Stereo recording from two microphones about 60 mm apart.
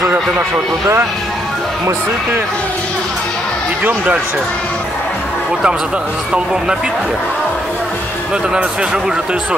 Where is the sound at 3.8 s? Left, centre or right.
Right.